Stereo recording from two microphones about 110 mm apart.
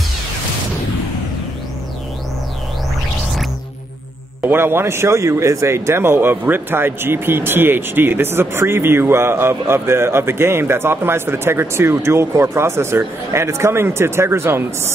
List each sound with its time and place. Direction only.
4.5 s speech: 20° right (ahead or behind)